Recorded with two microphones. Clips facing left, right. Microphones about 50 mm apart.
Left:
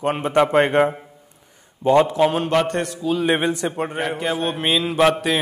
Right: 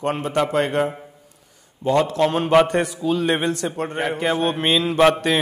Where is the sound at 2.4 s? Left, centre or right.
Centre.